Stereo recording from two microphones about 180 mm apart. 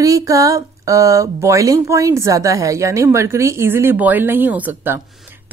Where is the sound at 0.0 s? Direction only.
20° right (ahead or behind).